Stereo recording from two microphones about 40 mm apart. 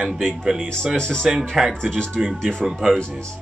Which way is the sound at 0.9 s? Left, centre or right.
Centre.